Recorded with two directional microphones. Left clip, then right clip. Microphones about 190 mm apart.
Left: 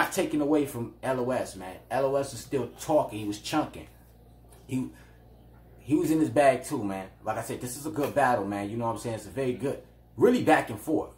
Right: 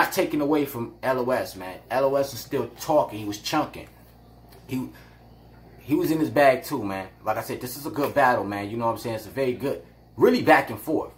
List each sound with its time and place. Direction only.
0.1 s speech: centre (ahead or behind)
5.9 s speech: centre (ahead or behind)